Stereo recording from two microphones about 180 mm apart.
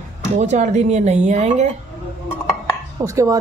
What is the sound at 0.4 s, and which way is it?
Speech, 40° right (ahead or behind).